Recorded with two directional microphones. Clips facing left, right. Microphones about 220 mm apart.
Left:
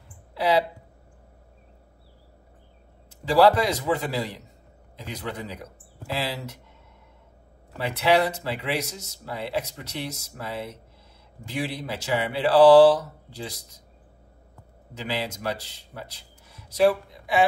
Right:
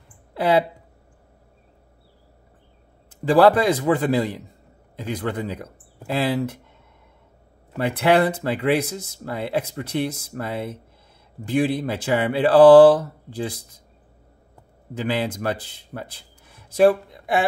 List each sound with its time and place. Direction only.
0.3 s speech: 55° right (ahead or behind)
3.1 s speech: 50° right (ahead or behind)
7.7 s speech: 50° right (ahead or behind)
15.0 s speech: 50° right (ahead or behind)